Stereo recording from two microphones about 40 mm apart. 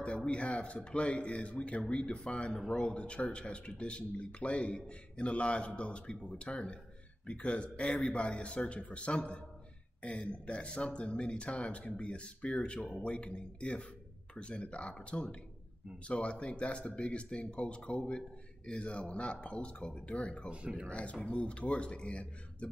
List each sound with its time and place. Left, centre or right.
0.3 s speech: left
20.4 s speech: right
20.9 s speech: left